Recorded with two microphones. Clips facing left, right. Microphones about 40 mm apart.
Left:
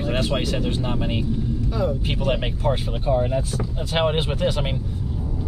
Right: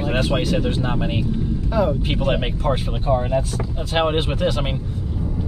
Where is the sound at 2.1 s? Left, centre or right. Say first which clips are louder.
Right 2 dB; centre.